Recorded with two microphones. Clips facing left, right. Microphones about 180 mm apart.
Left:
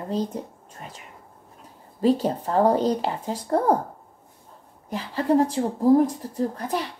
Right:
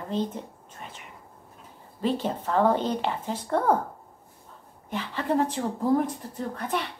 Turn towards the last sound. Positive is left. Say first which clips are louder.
# left 4 dB
turn(degrees=35)  # may be behind; listen again after turning